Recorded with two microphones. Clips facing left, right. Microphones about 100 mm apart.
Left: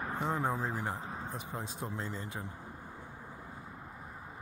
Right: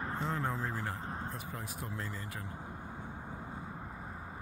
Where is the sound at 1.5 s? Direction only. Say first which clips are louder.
Left 2 dB; 20° left (ahead or behind).